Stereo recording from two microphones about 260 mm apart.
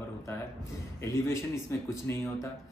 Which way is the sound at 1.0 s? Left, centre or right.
Centre.